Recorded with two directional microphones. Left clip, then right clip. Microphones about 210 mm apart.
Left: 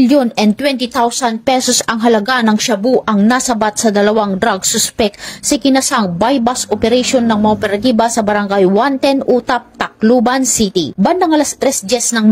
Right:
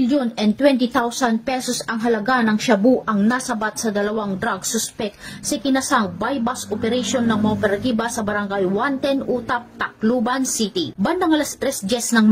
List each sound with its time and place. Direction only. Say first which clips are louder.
0.1 s a woman's voice: left 9 dB; 35° left (ahead or behind)